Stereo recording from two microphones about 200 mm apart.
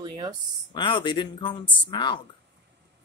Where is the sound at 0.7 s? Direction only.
25° left (ahead or behind).